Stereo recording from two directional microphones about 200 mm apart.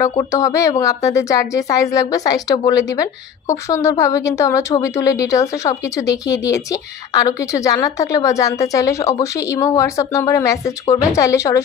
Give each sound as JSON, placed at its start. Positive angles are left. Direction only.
{"t": 0.0, "sound": "a woman's voice", "side_deg": 15}